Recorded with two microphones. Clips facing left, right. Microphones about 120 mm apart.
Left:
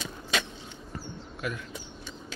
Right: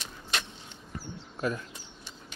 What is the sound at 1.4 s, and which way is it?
Speech, 35° right (ahead or behind).